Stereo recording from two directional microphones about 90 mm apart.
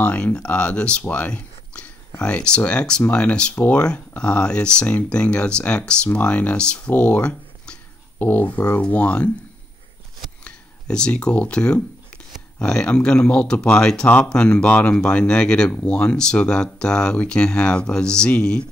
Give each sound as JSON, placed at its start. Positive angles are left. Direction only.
{"t": 0.0, "sound": "speech", "side_deg": 15}
{"t": 10.4, "sound": "speech", "side_deg": 10}